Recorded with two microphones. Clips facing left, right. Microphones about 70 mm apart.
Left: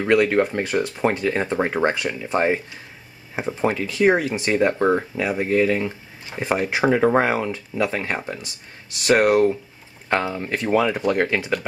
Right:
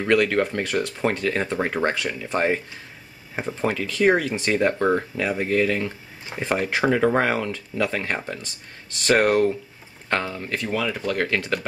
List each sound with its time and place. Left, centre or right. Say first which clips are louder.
0.0 s speech: left 2 dB; centre